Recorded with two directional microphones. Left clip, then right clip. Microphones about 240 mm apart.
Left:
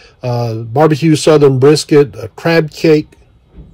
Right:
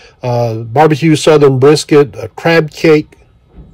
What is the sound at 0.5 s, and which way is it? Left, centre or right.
Speech, centre.